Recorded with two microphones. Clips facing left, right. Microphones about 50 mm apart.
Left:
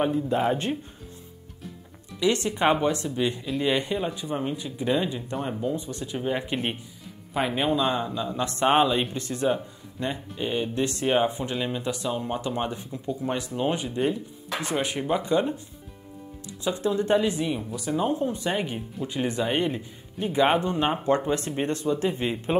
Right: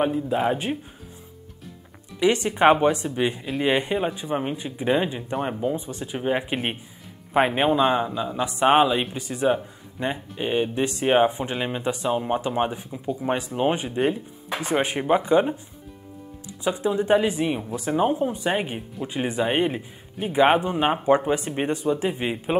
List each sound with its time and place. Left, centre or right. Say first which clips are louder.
0.0 s speech: right 1 dB; centre
2.1 s speech: right 3 dB; right
7.3 s speech: right 5 dB; right
7.8 s speech: right 4 dB; centre
16.6 s speech: right 2 dB; centre